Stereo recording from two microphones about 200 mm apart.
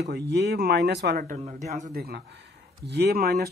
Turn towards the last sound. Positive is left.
turn(degrees=-55)  # may be behind; listen again after turning